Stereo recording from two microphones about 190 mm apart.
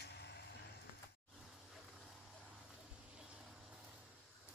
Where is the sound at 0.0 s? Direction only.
65° left (ahead or behind).